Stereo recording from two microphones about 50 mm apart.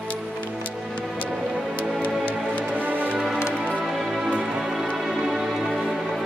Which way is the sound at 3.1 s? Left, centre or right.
Centre.